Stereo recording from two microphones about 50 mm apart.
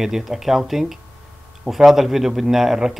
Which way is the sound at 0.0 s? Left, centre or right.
Centre.